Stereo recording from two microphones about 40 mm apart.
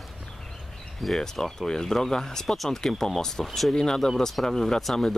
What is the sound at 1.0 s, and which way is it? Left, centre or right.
Speech, centre.